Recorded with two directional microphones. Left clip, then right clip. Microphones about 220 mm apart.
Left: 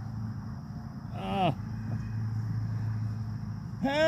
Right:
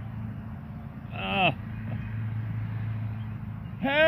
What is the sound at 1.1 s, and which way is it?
Vehicle, 15° left (ahead or behind).